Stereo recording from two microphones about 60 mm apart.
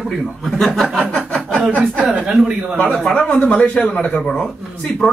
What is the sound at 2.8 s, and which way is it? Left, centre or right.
Speech, centre.